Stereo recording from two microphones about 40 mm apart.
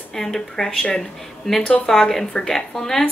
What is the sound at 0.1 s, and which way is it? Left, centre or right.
A woman's voice, centre.